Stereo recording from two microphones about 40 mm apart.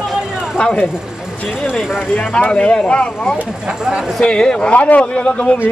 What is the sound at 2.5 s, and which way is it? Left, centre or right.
Speech, left.